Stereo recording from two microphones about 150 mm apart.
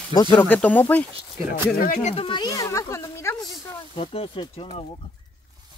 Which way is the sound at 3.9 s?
40° left (ahead or behind).